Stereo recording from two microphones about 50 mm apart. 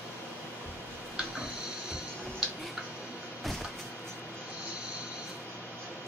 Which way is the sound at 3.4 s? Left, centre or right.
Centre.